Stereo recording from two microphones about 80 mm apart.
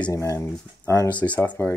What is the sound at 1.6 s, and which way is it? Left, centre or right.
Speech, left.